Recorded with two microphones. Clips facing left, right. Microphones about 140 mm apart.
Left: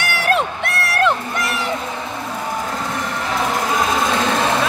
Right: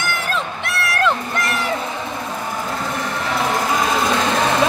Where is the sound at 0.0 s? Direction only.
70° left (ahead or behind).